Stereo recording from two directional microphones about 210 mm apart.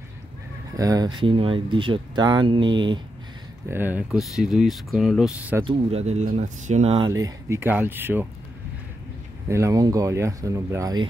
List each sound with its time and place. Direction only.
0.7 s speech: 15° right (ahead or behind)
3.7 s speech: 10° right (ahead or behind)
5.7 s speech: 30° right (ahead or behind)
7.1 s speech: 15° right (ahead or behind)
9.5 s speech: 15° right (ahead or behind)